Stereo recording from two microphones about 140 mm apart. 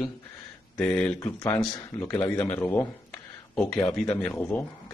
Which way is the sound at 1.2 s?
20° left (ahead or behind).